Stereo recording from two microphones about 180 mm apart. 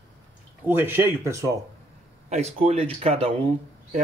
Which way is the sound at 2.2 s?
35° right (ahead or behind).